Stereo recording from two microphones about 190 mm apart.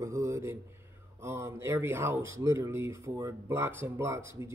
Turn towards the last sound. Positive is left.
turn(degrees=-15)  # may be behind; listen again after turning